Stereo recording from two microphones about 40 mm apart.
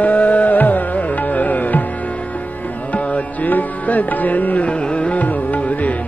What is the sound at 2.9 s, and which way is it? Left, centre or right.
Music, left.